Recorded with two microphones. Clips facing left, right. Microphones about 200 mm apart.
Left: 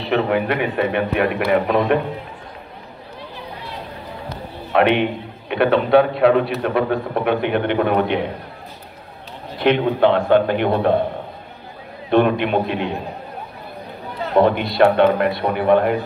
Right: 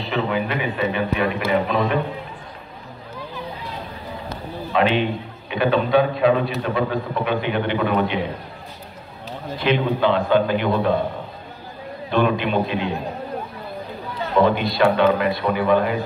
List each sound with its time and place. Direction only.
0.0 s a man's voice: 65° left (ahead or behind)
4.7 s a man's voice: 65° left (ahead or behind)
9.6 s a man's voice: 60° left (ahead or behind)
12.1 s a man's voice: 60° left (ahead or behind)
14.3 s a man's voice: 60° left (ahead or behind)